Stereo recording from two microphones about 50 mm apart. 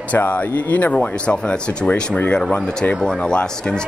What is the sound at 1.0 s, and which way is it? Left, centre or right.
Speech, left.